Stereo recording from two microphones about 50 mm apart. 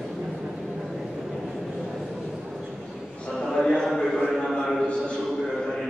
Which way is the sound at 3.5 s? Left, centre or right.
Centre.